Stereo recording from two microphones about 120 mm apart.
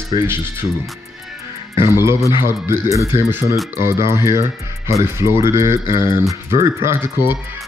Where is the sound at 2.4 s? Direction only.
20° right (ahead or behind).